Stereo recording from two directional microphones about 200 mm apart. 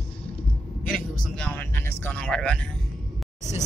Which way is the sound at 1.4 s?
5° left (ahead or behind).